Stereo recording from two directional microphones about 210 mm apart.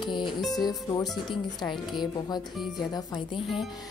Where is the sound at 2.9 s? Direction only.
25° left (ahead or behind).